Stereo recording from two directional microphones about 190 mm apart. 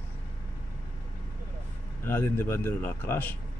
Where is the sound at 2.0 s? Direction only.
10° left (ahead or behind).